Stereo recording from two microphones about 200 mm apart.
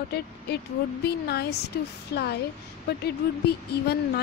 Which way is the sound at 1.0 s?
50° left (ahead or behind).